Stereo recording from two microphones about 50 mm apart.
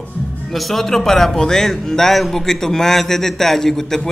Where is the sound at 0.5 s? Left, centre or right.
Centre.